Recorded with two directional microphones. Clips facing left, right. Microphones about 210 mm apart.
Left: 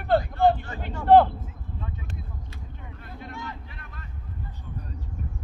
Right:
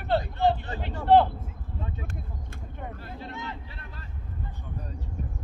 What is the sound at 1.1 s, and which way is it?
Speech, 50° left (ahead or behind).